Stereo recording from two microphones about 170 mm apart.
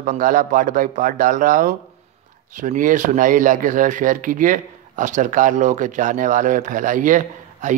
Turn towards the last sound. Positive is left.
turn(degrees=-50)  # may be behind; listen again after turning